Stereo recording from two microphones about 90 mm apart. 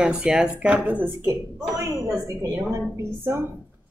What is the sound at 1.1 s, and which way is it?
Speech, 30° right (ahead or behind).